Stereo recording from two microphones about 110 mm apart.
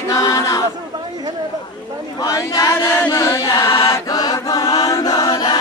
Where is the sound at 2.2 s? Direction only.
35° left (ahead or behind).